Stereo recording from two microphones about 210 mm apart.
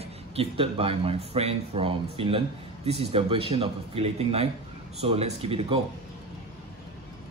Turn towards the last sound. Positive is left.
turn(degrees=-25)  # may be behind; listen again after turning